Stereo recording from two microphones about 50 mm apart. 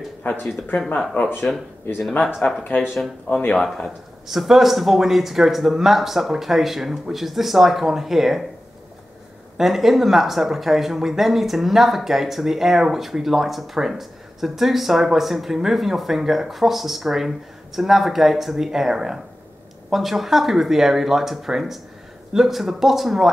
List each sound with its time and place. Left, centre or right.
0.2 s speech: left
0.7 s a man's voice: centre
2.7 s speech: left
3.5 s a man's voice: centre
4.3 s speech: centre
9.6 s speech: centre